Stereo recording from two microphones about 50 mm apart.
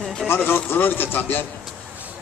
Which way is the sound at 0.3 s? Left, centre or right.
Left.